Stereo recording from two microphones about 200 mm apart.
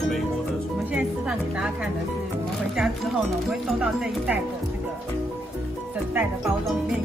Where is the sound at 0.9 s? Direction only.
5° right (ahead or behind).